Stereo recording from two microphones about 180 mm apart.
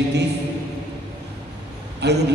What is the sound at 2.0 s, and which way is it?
Speech, 70° right (ahead or behind).